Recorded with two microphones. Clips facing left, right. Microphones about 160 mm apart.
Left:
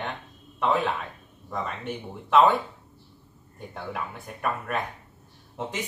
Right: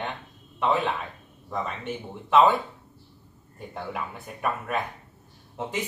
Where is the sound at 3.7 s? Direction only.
Centre (ahead or behind).